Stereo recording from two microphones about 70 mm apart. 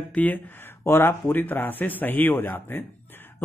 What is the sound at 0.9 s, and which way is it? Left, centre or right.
A man's voice, left.